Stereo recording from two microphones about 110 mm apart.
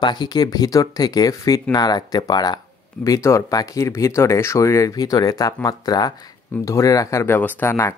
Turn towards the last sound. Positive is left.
turn(degrees=25)  # may be behind; listen again after turning